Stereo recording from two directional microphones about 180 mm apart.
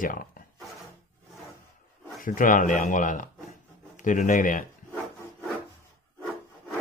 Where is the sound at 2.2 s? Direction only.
50° left (ahead or behind).